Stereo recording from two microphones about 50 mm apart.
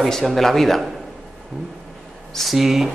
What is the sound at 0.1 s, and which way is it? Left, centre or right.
Speech, centre.